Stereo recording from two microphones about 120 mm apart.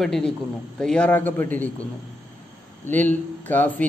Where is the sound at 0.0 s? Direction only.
5° left (ahead or behind).